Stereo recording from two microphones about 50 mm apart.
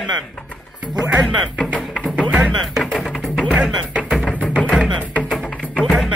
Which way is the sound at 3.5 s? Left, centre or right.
Right.